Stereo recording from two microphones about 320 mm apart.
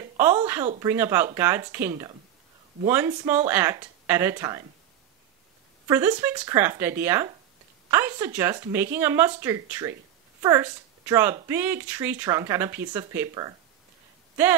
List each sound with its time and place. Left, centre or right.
0.7 s speech: centre
5.9 s speech: centre